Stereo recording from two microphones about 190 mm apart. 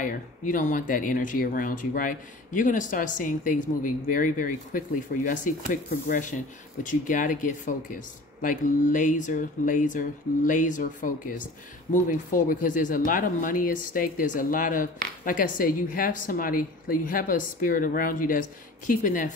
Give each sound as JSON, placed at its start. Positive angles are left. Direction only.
{"t": 0.0, "sound": "speech", "side_deg": 45}
{"t": 11.9, "sound": "speech", "side_deg": 45}